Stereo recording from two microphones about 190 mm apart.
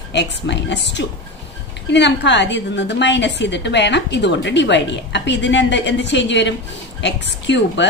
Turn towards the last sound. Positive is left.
turn(degrees=70)  # may be behind; listen again after turning